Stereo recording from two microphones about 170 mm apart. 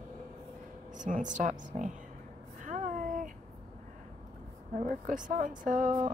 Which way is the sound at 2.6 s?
50° right (ahead or behind).